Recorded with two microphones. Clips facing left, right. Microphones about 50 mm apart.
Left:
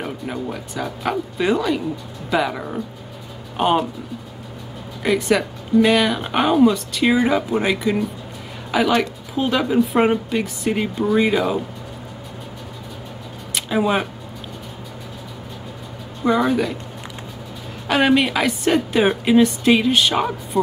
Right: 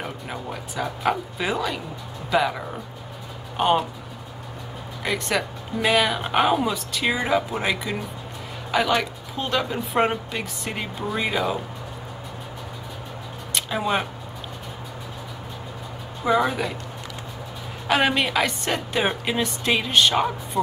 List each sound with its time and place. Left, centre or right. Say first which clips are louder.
0.0 s speech: left 5 dB; centre
5.0 s speech: left 7 dB; centre
13.6 s speech: left 5 dB; centre
16.3 s speech: left 3 dB; centre
17.8 s speech: left 4 dB; centre